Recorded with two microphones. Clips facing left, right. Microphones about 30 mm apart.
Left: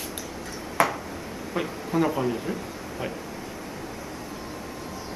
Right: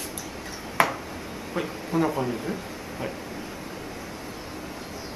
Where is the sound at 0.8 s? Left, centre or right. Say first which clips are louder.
Even; right.